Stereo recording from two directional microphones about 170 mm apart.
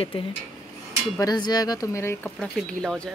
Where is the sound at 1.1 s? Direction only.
20° left (ahead or behind).